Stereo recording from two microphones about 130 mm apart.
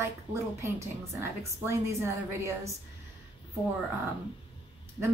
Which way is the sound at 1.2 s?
20° right (ahead or behind).